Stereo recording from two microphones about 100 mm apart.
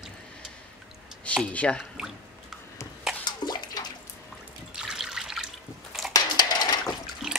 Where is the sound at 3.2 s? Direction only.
45° left (ahead or behind).